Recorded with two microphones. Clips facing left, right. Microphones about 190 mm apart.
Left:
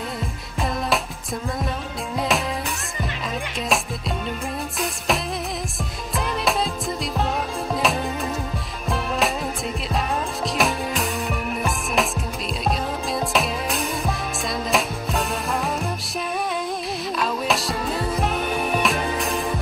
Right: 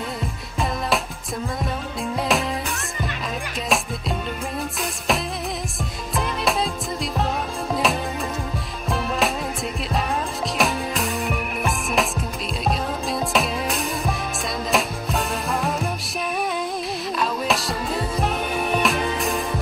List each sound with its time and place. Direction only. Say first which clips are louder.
4.7 s music: left 1 dB; centre (ahead or behind)
7.7 s music: even; centre (ahead or behind)
10.6 s music: right 1 dB; centre (ahead or behind)
17.2 s music: even; centre (ahead or behind)
18.8 s music: right 1 dB; centre (ahead or behind)